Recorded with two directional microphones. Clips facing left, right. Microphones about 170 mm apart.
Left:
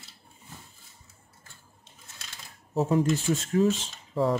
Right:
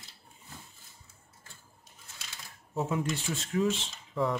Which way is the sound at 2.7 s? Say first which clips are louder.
Left 7 dB; 35° left (ahead or behind).